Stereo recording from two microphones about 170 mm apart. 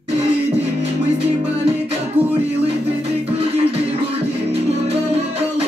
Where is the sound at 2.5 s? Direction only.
35° right (ahead or behind).